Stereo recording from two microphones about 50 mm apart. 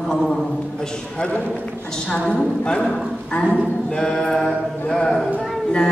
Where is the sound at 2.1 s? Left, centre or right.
Left.